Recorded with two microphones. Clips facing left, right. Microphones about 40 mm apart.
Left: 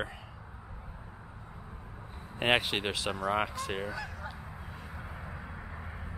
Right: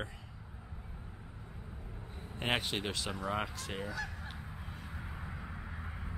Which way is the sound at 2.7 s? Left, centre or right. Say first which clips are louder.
Left 5 dB; left.